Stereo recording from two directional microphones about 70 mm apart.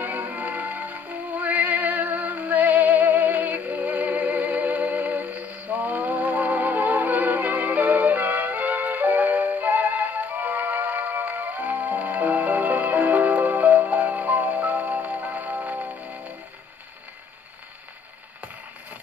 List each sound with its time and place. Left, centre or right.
0.0 s music: right